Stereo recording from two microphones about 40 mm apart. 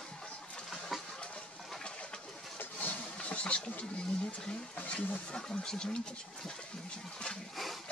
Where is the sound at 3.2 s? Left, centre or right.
Left.